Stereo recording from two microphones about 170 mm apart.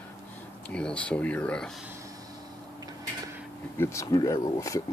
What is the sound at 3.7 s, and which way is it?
Speech, 15° left (ahead or behind).